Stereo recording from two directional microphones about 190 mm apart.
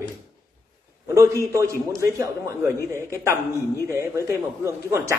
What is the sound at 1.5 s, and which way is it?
A man's voice, 15° right (ahead or behind).